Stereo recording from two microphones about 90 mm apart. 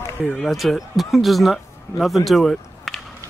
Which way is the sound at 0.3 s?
5° left (ahead or behind).